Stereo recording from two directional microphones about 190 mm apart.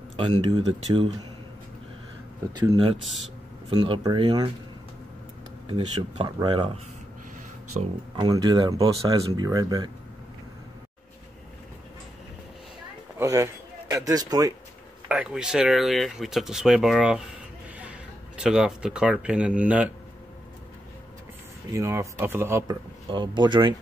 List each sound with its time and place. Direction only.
0.1 s speech: 25° right (ahead or behind)
2.5 s speech: 25° right (ahead or behind)
5.7 s speech: 25° right (ahead or behind)
8.2 s speech: 20° right (ahead or behind)
13.2 s a sound: 15° right (ahead or behind)
15.0 s speech: 5° right (ahead or behind)
18.4 s speech: 5° right (ahead or behind)
21.7 s speech: 15° right (ahead or behind)